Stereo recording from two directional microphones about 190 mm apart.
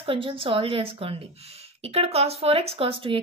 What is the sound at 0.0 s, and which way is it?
A woman's voice, 25° right (ahead or behind).